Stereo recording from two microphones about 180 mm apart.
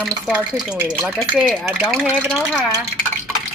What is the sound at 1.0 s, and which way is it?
Speech, centre (ahead or behind).